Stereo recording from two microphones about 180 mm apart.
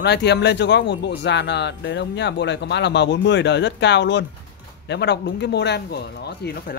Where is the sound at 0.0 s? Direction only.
70° left (ahead or behind).